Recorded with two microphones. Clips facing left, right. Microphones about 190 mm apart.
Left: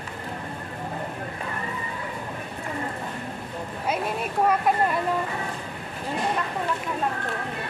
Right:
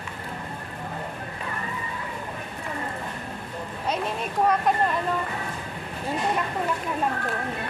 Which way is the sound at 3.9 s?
5° left (ahead or behind).